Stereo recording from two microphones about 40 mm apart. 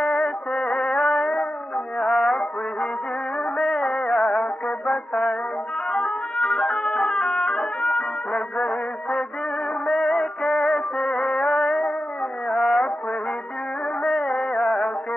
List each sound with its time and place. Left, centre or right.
0.0 s music: left
14.0 s music: centre